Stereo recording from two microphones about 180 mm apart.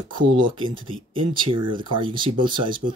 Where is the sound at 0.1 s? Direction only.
30° right (ahead or behind).